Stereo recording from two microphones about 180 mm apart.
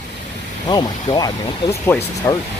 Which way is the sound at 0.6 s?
25° left (ahead or behind).